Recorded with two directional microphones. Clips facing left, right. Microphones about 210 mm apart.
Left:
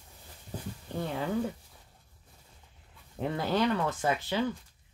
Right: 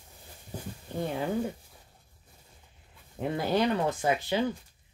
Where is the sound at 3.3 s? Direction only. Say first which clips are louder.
Right 2 dB; 25° right (ahead or behind).